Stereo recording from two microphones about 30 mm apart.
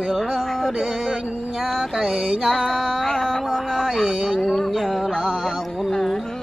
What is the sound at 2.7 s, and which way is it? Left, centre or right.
Music, centre.